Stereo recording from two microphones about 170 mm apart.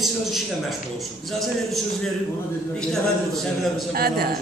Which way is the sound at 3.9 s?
65° right (ahead or behind).